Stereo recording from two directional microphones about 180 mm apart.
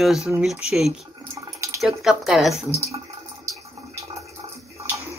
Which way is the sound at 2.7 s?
15° right (ahead or behind).